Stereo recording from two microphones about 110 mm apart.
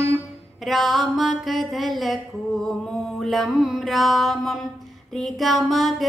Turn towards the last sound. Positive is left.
turn(degrees=0)  # may be behind; listen again after turning